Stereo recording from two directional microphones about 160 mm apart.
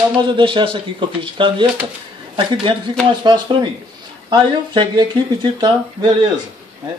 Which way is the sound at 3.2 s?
25° right (ahead or behind).